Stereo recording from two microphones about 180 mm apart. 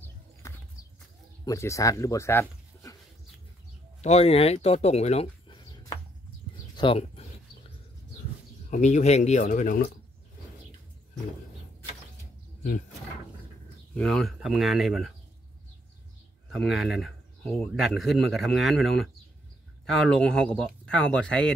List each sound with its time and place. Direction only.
0.4 s horse: 15° left (ahead or behind)
1.4 s speech: 15° left (ahead or behind)
4.0 s speech: 35° left (ahead or behind)
6.8 s speech: 30° left (ahead or behind)
8.6 s speech: 45° left (ahead or behind)
13.9 s speech: 5° left (ahead or behind)
16.5 s speech: centre (ahead or behind)